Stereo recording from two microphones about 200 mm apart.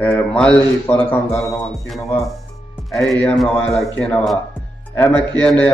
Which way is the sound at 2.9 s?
Centre (ahead or behind).